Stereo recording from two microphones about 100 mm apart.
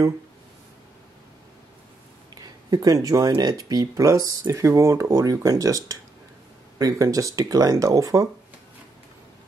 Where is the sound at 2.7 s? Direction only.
35° right (ahead or behind).